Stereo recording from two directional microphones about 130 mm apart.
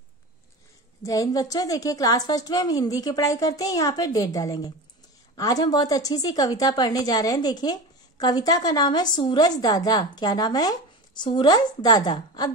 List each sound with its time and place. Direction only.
1.0 s a woman's voice: 25° left (ahead or behind)